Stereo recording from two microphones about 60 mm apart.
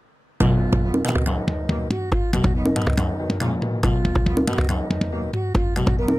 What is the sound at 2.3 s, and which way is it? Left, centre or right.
Music, centre.